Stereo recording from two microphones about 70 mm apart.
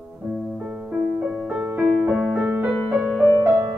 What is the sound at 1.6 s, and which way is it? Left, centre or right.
Music, right.